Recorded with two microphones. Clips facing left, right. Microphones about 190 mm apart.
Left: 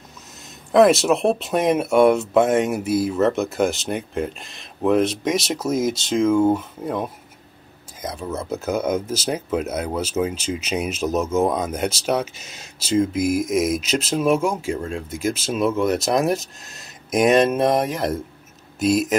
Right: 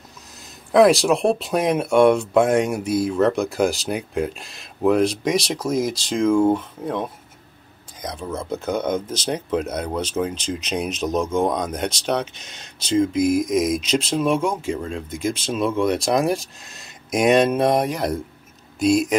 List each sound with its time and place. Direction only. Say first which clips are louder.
0.7 s speech: even; centre (ahead or behind)